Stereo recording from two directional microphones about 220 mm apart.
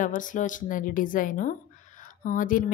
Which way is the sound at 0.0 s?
35° left (ahead or behind).